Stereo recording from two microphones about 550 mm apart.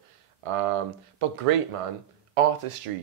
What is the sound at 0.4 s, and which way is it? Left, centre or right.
Speech, right.